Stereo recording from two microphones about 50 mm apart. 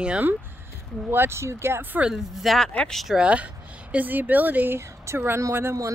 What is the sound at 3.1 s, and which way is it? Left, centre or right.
Speech, right.